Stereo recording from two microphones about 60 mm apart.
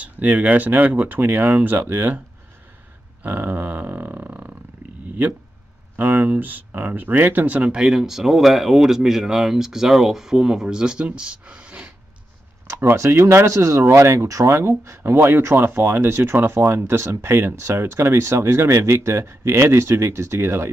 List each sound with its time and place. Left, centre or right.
0.0 s speech: right
3.3 s grunt: right
5.9 s speech: right
12.8 s speech: right